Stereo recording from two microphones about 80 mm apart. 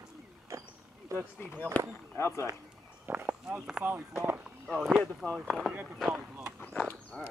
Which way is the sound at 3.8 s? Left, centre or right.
Right.